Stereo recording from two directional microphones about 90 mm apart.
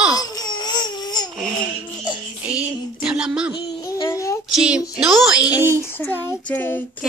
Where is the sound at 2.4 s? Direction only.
15° right (ahead or behind).